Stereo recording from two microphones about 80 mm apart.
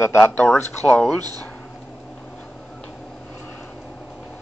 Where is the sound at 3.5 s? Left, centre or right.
Left.